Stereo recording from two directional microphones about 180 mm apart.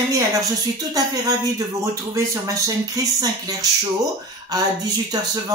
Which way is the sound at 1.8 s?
15° right (ahead or behind).